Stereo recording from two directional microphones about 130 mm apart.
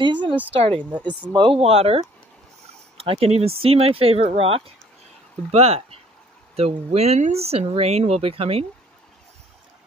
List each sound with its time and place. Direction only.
0.0 s speech: 35° right (ahead or behind)